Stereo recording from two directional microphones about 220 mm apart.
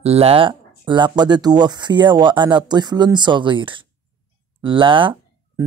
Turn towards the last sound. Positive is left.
turn(degrees=-20)  # may be behind; listen again after turning